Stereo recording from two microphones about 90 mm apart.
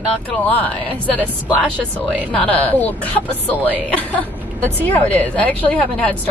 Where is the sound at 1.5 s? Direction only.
15° left (ahead or behind).